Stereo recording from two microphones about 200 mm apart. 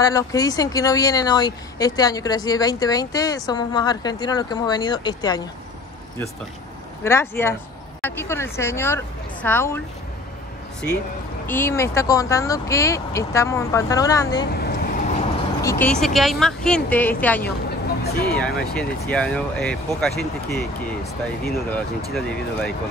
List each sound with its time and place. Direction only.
0.0 s speech: 15° left (ahead or behind)
7.1 s speech: 15° left (ahead or behind)
11.4 s speech: 10° left (ahead or behind)
14.5 s vehicle: 50° left (ahead or behind)
15.6 s speech: 15° left (ahead or behind)
15.9 s speech: centre (ahead or behind)
21.5 s speech: 5° left (ahead or behind)